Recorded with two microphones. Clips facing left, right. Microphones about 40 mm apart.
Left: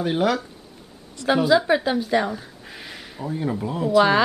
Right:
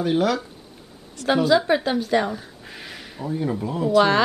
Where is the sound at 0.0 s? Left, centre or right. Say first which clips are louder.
Right 1 dB; centre.